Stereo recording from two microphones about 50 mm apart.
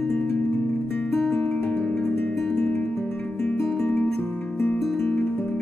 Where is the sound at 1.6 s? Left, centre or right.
Left.